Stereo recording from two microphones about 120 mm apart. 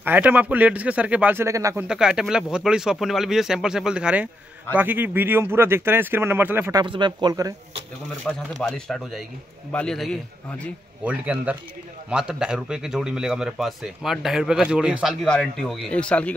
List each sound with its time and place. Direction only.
0.0 s speech: 15° right (ahead or behind)
1.9 s speech: 5° right (ahead or behind)
6.7 s speech: 35° right (ahead or behind)
8.5 s speech: centre (ahead or behind)
11.1 s speech: 10° right (ahead or behind)
15.2 s speech: 5° left (ahead or behind)